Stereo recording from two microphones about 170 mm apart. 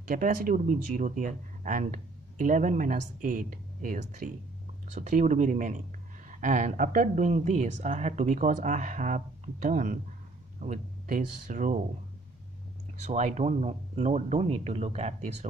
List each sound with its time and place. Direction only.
0.1 s speech: 55° right (ahead or behind)
13.0 s speech: 45° right (ahead or behind)